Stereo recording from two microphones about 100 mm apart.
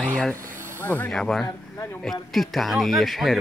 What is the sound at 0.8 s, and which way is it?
Speech, 20° left (ahead or behind).